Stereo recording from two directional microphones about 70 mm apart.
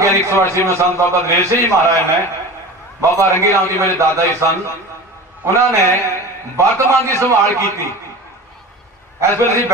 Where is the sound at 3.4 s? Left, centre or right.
Right.